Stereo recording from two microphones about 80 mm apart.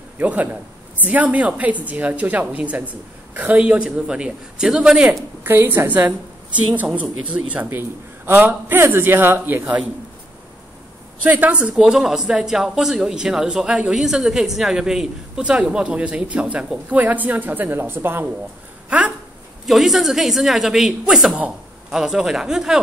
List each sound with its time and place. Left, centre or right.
0.2 s a woman's voice: right
5.4 s a woman's voice: right
11.2 s a woman's voice: right
11.7 s speech: centre; by 18.3 s right
18.9 s speech: centre
19.6 s a woman's voice: centre